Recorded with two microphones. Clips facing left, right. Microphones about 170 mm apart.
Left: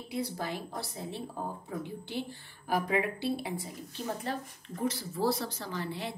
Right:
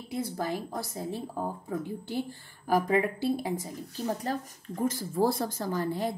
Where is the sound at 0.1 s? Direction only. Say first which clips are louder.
Right 3 dB; 45° right (ahead or behind).